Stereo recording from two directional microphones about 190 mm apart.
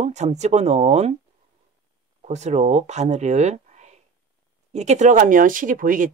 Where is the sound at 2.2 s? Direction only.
35° right (ahead or behind).